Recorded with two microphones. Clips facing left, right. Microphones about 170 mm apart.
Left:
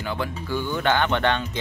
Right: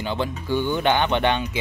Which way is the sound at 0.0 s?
25° right (ahead or behind).